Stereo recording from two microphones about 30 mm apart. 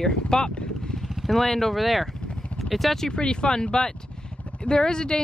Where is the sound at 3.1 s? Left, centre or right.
Left.